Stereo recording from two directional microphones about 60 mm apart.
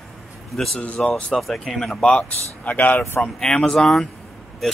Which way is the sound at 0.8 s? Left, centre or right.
Left.